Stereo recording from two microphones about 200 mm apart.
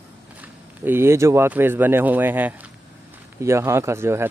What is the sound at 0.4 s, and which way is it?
Speech, 10° right (ahead or behind).